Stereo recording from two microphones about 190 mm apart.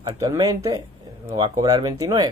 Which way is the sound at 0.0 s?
15° right (ahead or behind).